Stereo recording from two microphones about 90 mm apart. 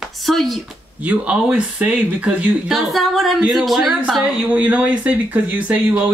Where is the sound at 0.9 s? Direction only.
15° right (ahead or behind).